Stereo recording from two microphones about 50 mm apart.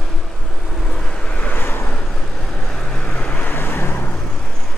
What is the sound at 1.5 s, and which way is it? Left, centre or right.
Vehicle, left.